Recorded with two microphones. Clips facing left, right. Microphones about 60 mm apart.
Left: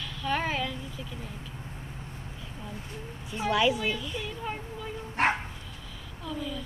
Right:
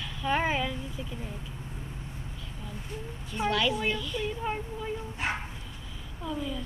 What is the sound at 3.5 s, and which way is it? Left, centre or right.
Speech, centre.